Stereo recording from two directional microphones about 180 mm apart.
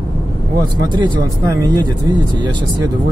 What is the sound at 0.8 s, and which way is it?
Speech, 20° right (ahead or behind).